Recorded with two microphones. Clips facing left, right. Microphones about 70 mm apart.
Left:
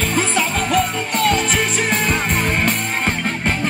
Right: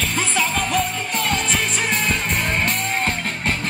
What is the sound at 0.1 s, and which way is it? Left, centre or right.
Music, left.